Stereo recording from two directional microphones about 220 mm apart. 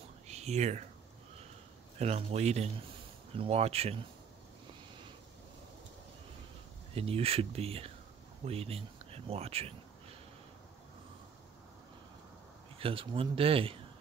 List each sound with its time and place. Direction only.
0.3 s speech: 30° right (ahead or behind)
2.0 s speech: 30° right (ahead or behind)
6.9 s speech: 25° right (ahead or behind)
12.7 s speech: 25° right (ahead or behind)